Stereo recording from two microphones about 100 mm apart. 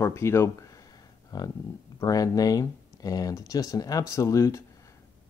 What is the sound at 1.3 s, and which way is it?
Speech, 40° left (ahead or behind).